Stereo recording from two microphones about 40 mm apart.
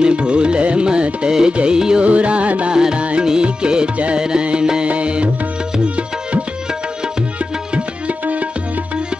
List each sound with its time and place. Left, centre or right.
0.0 s music: right
2.0 s music: right
2.7 s music: right
7.7 s music: right